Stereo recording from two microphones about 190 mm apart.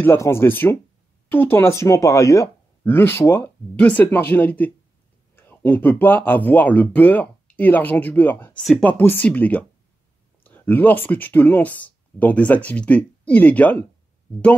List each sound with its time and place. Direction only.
0.0 s speech: 10° left (ahead or behind)